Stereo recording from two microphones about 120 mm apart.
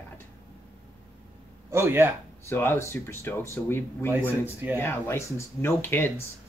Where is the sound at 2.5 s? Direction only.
20° left (ahead or behind).